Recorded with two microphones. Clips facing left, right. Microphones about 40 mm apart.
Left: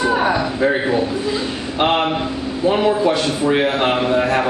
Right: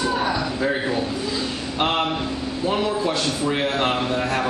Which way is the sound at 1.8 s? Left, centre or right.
Centre.